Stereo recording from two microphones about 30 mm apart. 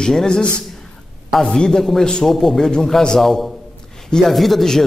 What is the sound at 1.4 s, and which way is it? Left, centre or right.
Speech, left.